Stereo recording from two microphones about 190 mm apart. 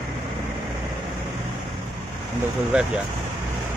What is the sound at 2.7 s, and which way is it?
Speech, 5° right (ahead or behind).